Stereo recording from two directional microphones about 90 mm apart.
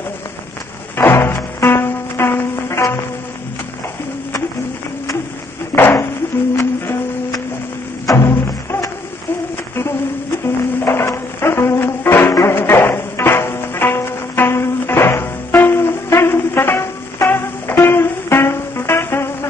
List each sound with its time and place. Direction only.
0.9 s music: 25° left (ahead or behind)
5.8 s a sound: 25° left (ahead or behind)
6.5 s music: 30° left (ahead or behind)
10.4 s music: 25° left (ahead or behind)